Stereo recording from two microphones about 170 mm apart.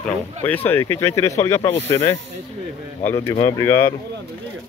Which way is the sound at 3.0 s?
15° left (ahead or behind).